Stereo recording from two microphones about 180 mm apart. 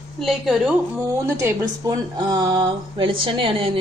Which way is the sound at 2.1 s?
25° right (ahead or behind).